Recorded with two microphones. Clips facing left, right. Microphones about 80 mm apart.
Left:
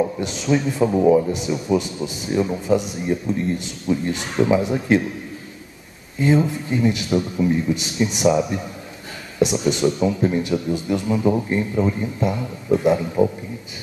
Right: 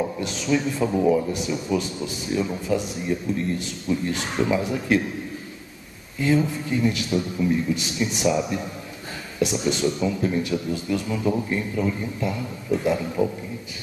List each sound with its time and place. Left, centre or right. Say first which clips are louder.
0.2 s speech: left 3 dB; left
6.1 s speech: left 3 dB; left